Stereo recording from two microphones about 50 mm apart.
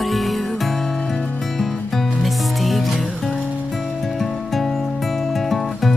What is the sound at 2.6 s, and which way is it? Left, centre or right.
Music, centre.